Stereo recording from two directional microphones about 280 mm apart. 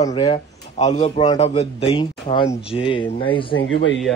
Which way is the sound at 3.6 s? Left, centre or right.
Left.